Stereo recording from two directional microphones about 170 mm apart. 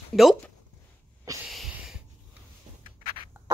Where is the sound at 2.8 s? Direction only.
50° left (ahead or behind).